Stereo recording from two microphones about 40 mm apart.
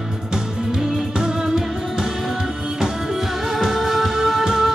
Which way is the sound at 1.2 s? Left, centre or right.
Centre.